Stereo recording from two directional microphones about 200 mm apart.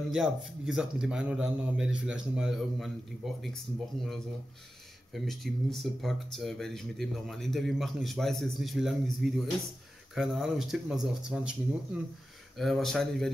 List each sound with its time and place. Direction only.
0.1 s speech: centre (ahead or behind)
3.9 s speech: centre (ahead or behind)
5.1 s speech: centre (ahead or behind)